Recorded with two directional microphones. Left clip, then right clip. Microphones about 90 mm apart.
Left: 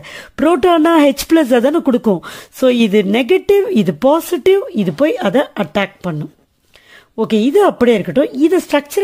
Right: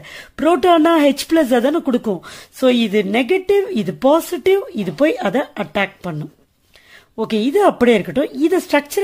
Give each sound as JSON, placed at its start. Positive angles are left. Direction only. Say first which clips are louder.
{"t": 0.0, "sound": "speech", "louder": "left 3 dB", "side_deg": 55}
{"t": 7.2, "sound": "a woman's voice", "louder": "left 4 dB", "side_deg": 40}